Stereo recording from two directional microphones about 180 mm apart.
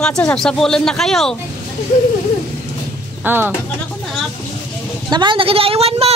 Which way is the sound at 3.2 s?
10° right (ahead or behind).